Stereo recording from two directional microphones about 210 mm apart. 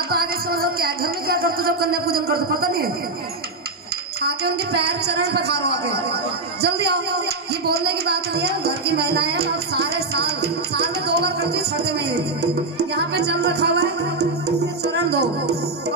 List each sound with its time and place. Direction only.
0.1 s speech: 45° right (ahead or behind)
4.2 s speech: 50° right (ahead or behind)
15.0 s speech: 50° right (ahead or behind)